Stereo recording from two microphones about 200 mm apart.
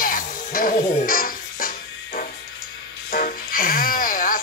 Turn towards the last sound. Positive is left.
turn(degrees=45)  # may be behind; listen again after turning